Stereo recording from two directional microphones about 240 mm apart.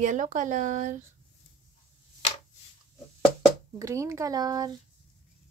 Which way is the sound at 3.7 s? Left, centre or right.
Centre.